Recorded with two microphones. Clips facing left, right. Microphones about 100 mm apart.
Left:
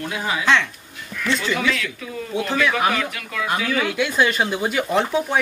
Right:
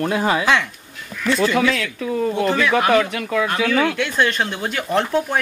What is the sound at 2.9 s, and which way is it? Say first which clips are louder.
Speech: right 9 dB; 35° right (ahead or behind).